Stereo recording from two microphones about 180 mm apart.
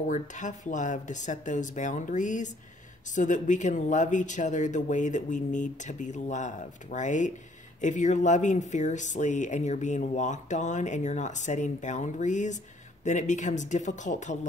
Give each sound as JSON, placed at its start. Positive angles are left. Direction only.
{"t": 0.0, "sound": "speech", "side_deg": 45}